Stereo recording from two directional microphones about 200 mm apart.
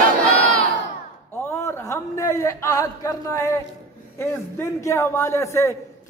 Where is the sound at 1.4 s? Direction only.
15° left (ahead or behind).